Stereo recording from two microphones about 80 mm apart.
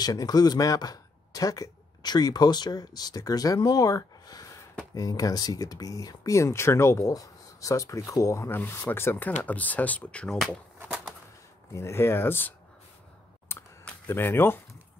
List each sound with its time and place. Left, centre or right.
0.0 s speech: left
8.5 s speech: left
11.7 s speech: left
14.0 s speech: left